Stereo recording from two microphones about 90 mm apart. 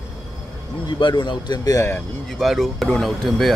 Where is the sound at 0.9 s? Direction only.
60° left (ahead or behind).